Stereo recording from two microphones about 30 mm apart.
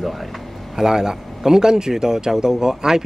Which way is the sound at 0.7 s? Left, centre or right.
Right.